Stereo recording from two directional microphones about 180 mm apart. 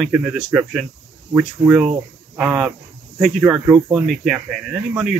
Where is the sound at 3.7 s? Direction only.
30° right (ahead or behind).